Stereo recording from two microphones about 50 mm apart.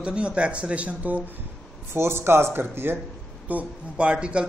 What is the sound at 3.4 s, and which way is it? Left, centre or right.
Speech, right.